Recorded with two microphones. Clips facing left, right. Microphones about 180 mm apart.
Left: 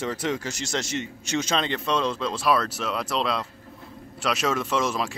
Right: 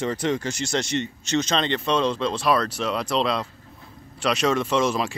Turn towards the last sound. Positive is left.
turn(degrees=0)  # may be behind; listen again after turning